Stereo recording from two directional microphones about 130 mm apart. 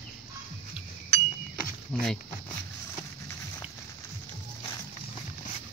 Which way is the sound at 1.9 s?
5° left (ahead or behind).